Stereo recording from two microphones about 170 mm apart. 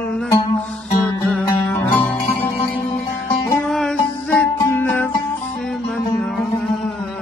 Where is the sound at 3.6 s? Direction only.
5° left (ahead or behind).